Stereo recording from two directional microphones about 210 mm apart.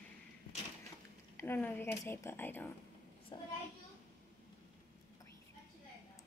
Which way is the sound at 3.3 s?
20° left (ahead or behind).